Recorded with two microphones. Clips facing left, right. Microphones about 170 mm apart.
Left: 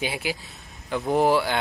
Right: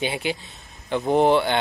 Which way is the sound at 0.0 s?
5° left (ahead or behind).